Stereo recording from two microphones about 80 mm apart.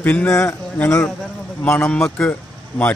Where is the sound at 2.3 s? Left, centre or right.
Centre.